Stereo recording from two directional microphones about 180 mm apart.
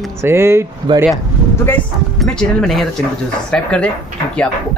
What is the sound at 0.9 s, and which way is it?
Speech, 25° right (ahead or behind).